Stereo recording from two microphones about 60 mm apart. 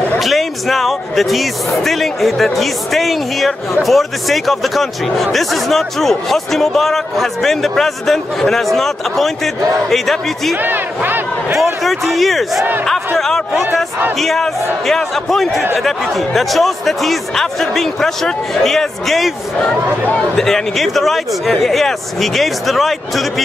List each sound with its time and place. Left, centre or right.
0.2 s speech: centre
10.5 s speech: right
11.5 s speech: centre
14.1 s speech: centre